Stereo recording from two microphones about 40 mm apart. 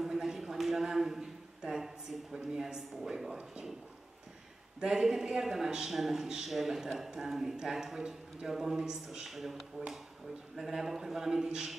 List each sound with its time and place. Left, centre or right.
0.0 s a sound: centre
2.3 s speech: centre
4.7 s a man's voice: centre